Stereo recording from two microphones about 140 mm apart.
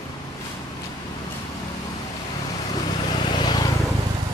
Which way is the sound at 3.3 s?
30° left (ahead or behind).